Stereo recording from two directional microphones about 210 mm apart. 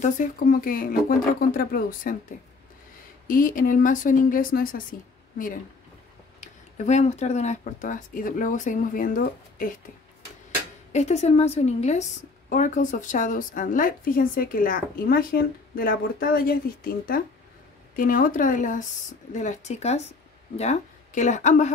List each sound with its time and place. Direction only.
0.0 s a woman's voice: 40° left (ahead or behind)
3.3 s a woman's voice: 40° left (ahead or behind)
6.4 s a woman's voice: 35° left (ahead or behind)
10.9 s a woman's voice: 35° left (ahead or behind)